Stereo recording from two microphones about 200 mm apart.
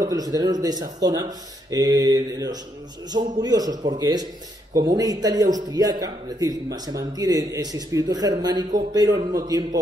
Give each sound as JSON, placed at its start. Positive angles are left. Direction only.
{"t": 0.0, "sound": "a man's voice", "side_deg": -20}